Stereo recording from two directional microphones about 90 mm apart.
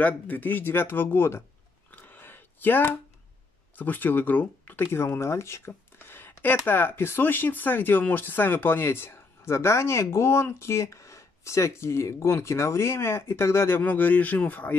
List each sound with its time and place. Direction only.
0.0 s speech: 20° left (ahead or behind)
1.9 s a sound: 20° left (ahead or behind)
3.7 s speech: 20° left (ahead or behind)